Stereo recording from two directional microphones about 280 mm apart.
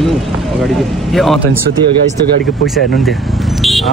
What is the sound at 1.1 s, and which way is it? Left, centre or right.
Speech, centre.